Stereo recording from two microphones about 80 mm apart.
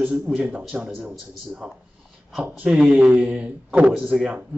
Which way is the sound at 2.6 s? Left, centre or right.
Centre.